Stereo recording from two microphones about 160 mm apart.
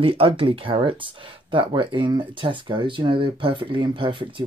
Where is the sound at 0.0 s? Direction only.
35° right (ahead or behind).